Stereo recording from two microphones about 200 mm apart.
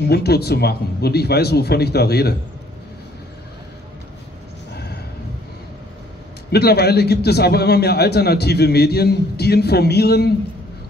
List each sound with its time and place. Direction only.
0.0 s a man's voice: 55° left (ahead or behind)
4.7 s a sound: 55° left (ahead or behind)
6.5 s a man's voice: 55° left (ahead or behind)